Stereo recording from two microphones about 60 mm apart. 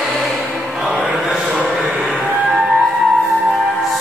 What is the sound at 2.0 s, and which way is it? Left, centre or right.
Music, centre.